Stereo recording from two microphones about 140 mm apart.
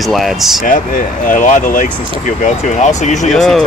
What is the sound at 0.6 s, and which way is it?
Speech, 75° left (ahead or behind).